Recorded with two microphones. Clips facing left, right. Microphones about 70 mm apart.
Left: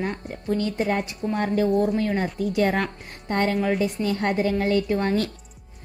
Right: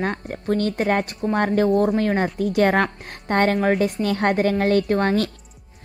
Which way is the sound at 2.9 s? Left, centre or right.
Right.